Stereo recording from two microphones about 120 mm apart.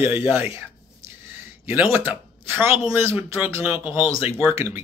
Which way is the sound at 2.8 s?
20° right (ahead or behind).